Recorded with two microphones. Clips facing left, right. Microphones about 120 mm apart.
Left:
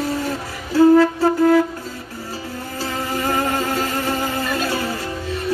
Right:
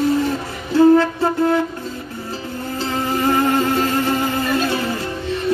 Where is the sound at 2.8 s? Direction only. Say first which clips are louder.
Right 4 dB; 25° right (ahead or behind).